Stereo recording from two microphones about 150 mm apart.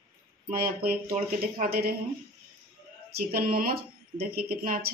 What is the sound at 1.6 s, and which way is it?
Speech, 90° right.